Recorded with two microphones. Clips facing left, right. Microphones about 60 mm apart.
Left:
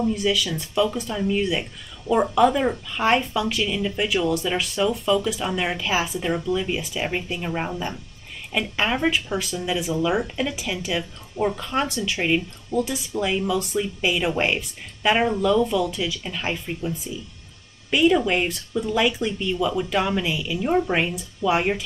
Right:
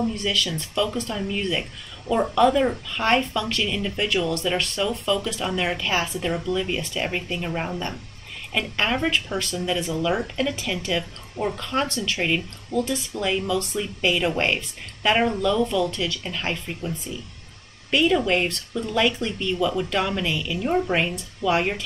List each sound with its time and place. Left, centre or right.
0.0 s speech: centre